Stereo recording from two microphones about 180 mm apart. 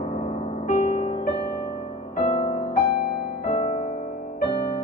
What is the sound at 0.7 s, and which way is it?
Music, 40° left (ahead or behind).